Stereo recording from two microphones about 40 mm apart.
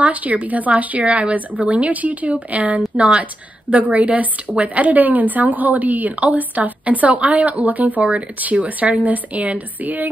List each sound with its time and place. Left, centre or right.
0.0 s speech: right
3.0 s a woman's voice: right
3.7 s speech: right